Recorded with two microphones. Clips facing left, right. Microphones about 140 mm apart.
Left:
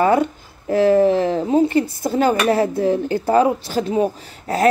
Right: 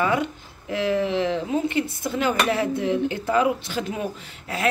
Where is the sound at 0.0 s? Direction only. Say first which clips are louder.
Left 7 dB; 40° left (ahead or behind).